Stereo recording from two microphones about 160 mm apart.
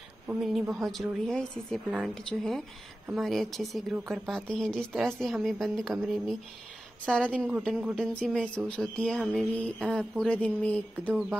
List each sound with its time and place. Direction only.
0.4 s a woman's voice: centre (ahead or behind)
7.3 s speech: 10° right (ahead or behind)
7.9 s a woman's voice: 5° left (ahead or behind)